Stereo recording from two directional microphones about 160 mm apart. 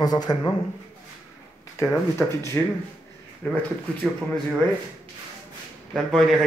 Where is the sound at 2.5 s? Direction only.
15° left (ahead or behind).